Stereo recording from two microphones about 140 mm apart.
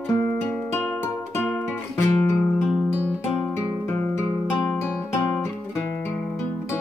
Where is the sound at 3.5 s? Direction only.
15° left (ahead or behind).